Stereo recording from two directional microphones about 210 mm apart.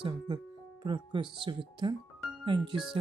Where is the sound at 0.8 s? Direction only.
25° right (ahead or behind).